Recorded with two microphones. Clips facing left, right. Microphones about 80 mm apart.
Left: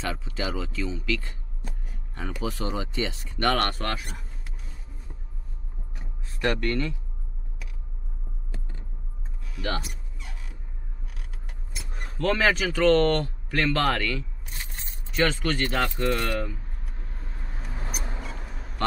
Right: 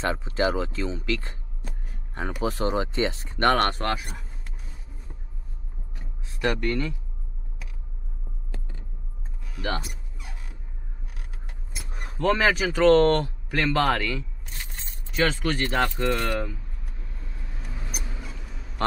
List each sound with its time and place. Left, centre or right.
0.0 s speech: right
2.4 s speech: right
3.8 s speech: centre
6.4 s speech: centre
9.6 s speech: centre
11.7 s keys jangling: centre
12.1 s speech: centre
17.4 s vehicle: left
18.3 s basketball bounce: left